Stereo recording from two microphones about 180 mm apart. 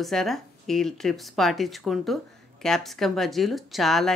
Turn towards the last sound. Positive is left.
turn(degrees=0)  # may be behind; listen again after turning